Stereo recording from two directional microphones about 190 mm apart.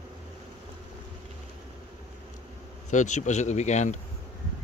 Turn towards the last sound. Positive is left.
turn(degrees=35)  # may be behind; listen again after turning